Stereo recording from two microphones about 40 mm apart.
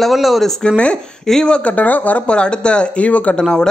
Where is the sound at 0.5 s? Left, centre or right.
Centre.